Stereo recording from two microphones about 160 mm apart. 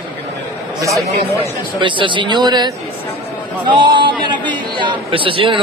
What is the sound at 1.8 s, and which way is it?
A man's voice, 30° right (ahead or behind).